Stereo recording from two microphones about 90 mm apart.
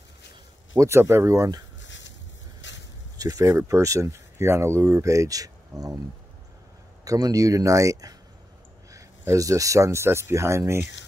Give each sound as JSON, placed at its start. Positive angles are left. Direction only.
{"t": 0.7, "sound": "speech", "side_deg": -30}
{"t": 3.2, "sound": "speech", "side_deg": -40}
{"t": 7.1, "sound": "speech", "side_deg": -40}